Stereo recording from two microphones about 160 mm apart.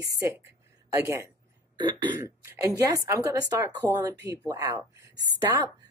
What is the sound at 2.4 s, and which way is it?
Speech, 15° right (ahead or behind).